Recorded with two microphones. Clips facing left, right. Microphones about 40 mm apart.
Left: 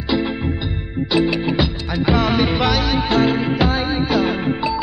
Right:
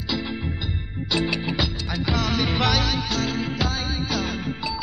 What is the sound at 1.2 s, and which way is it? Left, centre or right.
Music, centre.